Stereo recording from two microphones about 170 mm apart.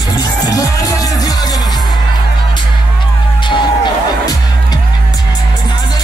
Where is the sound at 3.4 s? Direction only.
25° left (ahead or behind).